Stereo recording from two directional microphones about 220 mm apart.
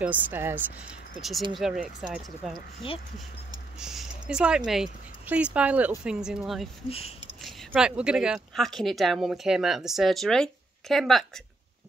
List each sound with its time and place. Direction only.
0.0 s speech: 10° right (ahead or behind)
1.6 s speech: centre (ahead or behind)
2.8 s speech: 25° left (ahead or behind)
3.8 s speech: 5° right (ahead or behind)
6.9 s speech: 25° left (ahead or behind)
7.4 s speech: 5° right (ahead or behind)